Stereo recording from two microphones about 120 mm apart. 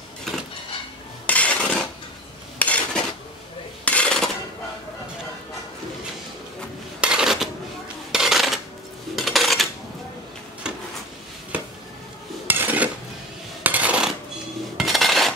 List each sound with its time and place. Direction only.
1.2 s dishes: 10° left (ahead or behind)
3.8 s cutlery: 10° left (ahead or behind)
7.0 s a sound: 5° right (ahead or behind)
8.1 s cutlery: 5° right (ahead or behind)
9.1 s dishes: centre (ahead or behind)
12.4 s dishes: 15° right (ahead or behind)
13.6 s coin: 15° right (ahead or behind)
14.8 s cutlery: centre (ahead or behind)